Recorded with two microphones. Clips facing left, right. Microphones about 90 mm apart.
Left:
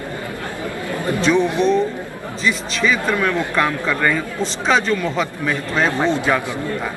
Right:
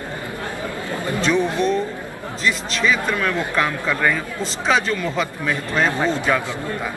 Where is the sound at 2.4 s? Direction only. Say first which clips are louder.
Left 1 dB; centre (ahead or behind).